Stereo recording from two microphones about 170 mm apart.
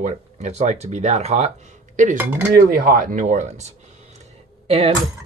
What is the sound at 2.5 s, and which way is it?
Speech, 55° right (ahead or behind).